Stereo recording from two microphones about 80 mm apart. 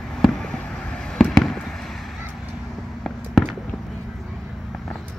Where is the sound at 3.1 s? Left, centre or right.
Centre.